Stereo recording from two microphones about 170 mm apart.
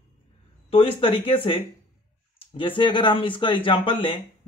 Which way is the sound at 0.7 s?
35° left (ahead or behind).